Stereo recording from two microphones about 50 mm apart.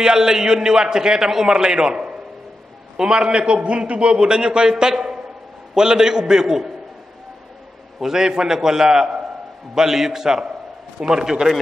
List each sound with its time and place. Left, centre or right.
0.0 s a man's voice: centre
8.0 s a man's voice: centre